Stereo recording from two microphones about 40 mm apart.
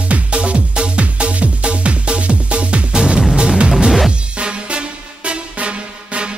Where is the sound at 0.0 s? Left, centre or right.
Right.